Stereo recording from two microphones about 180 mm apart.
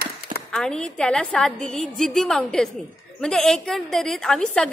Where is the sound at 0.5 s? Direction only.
5° left (ahead or behind).